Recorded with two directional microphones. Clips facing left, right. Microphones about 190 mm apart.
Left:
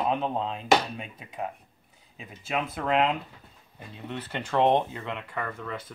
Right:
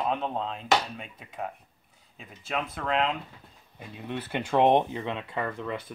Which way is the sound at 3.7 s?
10° right (ahead or behind).